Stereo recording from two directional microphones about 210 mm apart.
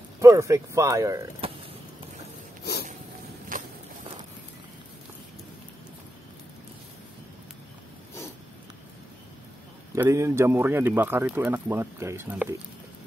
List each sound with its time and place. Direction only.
0.2 s speech: 15° right (ahead or behind)
1.4 s a sound: 25° right (ahead or behind)
3.5 s walk: 40° right (ahead or behind)
9.9 s speech: 15° right (ahead or behind)